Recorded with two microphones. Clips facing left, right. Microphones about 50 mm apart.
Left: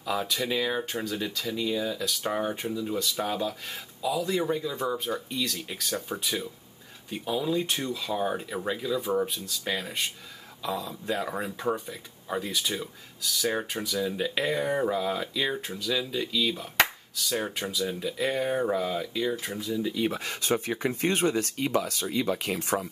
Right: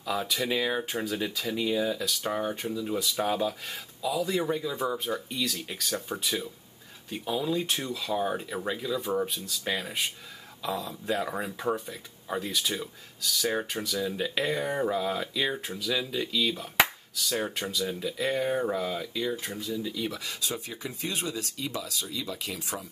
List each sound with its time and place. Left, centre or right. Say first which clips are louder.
0.0 s speech: left 1 dB; centre
19.9 s speech: left 5 dB; left